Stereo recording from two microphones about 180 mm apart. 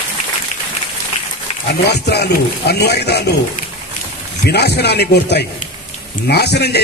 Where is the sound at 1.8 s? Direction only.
65° left (ahead or behind).